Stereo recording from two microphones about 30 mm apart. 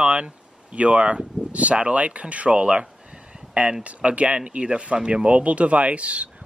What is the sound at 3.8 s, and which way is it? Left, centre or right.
Speech, right.